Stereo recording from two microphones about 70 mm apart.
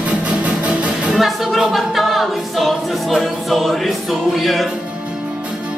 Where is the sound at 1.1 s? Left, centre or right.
Centre.